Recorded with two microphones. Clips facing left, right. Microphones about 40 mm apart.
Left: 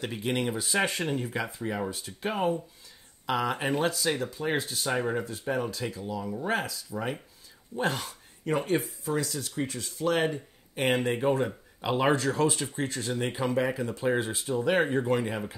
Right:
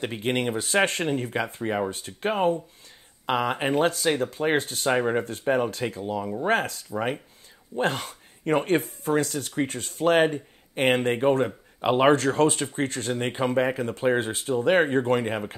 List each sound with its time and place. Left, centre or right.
0.0 s speech: right
4.1 s speech: right